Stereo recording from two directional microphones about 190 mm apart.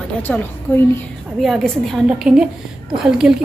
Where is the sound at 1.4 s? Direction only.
Centre (ahead or behind).